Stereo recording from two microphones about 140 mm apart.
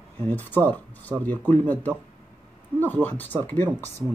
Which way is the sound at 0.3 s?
10° left (ahead or behind).